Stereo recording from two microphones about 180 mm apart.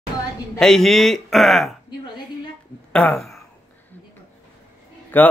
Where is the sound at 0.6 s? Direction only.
Centre (ahead or behind).